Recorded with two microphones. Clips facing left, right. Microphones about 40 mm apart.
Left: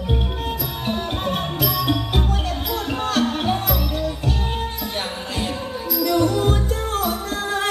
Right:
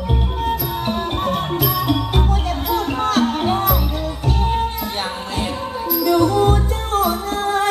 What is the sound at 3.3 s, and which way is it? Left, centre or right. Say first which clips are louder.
Music: right 3 dB; centre.